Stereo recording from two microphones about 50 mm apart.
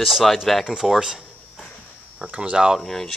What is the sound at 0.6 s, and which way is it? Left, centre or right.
Speech, centre.